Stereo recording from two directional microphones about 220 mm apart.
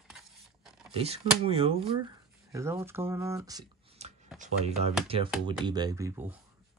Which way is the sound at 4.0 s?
30° right (ahead or behind).